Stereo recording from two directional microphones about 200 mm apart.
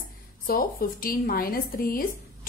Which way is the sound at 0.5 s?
45° left (ahead or behind).